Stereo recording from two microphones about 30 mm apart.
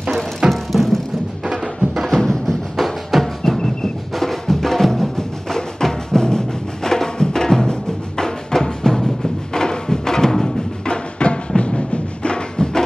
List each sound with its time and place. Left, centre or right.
0.5 s music: centre
2.0 s music: centre
3.1 s music: centre
3.4 s music: centre
10.9 s music: left